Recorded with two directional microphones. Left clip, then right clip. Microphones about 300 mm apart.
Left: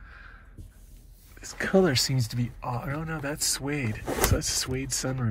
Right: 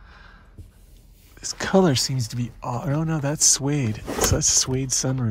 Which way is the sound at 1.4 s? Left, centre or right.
Centre.